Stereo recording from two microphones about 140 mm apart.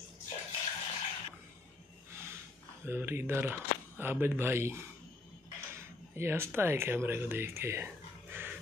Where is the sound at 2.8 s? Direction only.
15° right (ahead or behind).